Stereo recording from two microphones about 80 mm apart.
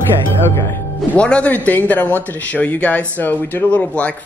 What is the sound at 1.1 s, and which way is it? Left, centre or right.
A woman's voice, centre.